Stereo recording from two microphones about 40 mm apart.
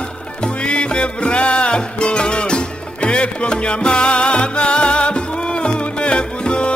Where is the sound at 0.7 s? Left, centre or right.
Left.